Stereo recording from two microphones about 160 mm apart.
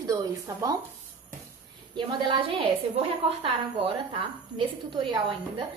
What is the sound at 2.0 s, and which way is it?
A woman's voice, 30° right (ahead or behind).